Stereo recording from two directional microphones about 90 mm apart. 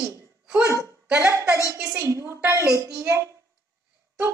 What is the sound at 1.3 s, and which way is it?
Music, 30° right (ahead or behind).